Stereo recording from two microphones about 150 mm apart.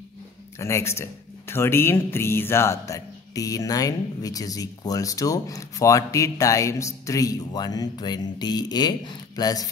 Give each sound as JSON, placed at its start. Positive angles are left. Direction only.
{"t": 0.6, "sound": "speech", "side_deg": 20}